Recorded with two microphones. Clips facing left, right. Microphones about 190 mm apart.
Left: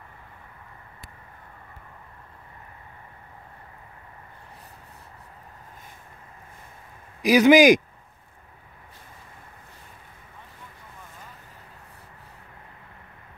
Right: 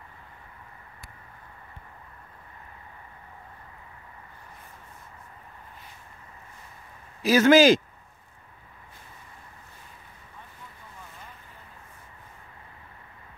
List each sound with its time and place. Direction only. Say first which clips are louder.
7.2 s speech: left 2 dB; 15° left (ahead or behind)